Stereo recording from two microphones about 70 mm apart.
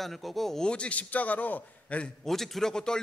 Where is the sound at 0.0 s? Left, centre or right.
Centre.